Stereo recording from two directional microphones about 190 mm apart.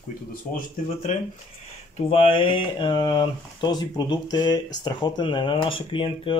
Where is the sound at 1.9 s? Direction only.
30° left (ahead or behind).